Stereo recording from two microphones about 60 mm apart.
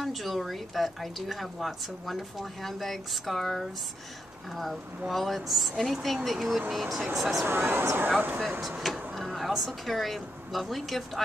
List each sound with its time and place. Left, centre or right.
0.0 s speech: centre
7.4 s speech: right
8.4 s speech: centre